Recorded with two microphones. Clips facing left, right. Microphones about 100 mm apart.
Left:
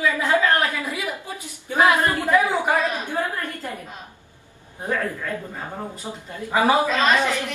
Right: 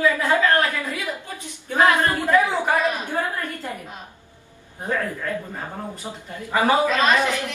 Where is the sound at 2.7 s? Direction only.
15° right (ahead or behind).